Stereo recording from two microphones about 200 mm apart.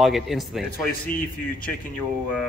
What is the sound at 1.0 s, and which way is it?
Speech, 45° left (ahead or behind).